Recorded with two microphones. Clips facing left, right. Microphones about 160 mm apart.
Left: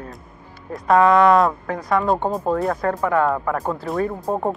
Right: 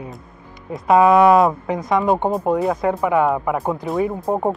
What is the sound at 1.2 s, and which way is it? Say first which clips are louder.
Speech: right 2 dB; centre (ahead or behind).